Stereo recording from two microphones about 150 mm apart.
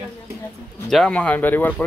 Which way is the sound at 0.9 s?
5° left (ahead or behind).